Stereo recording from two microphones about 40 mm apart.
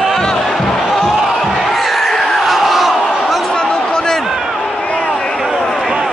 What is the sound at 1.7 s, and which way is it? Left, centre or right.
Battle cry, centre.